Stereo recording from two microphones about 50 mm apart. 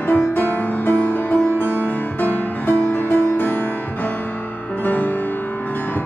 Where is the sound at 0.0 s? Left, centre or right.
Left.